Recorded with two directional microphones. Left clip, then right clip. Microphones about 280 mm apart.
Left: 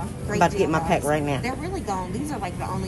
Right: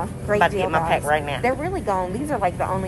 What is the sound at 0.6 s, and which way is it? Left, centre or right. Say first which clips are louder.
Speech: right 2 dB; left.